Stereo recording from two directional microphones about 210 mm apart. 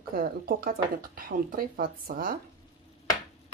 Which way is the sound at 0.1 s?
45° right (ahead or behind).